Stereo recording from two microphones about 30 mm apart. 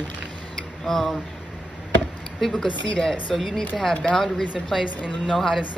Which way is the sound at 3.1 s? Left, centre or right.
Centre.